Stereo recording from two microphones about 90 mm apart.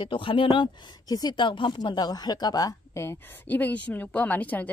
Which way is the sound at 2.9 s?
30° left (ahead or behind).